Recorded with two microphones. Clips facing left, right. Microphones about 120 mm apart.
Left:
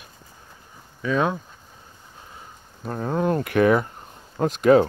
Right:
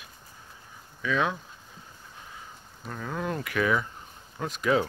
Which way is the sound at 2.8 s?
40° left (ahead or behind).